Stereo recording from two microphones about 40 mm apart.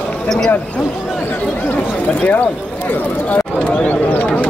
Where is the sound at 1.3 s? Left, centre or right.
Left.